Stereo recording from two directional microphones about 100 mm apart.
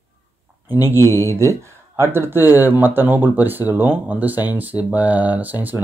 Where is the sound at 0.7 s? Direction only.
20° right (ahead or behind).